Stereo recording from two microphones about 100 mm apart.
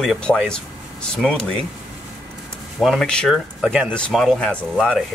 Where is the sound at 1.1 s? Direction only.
10° left (ahead or behind).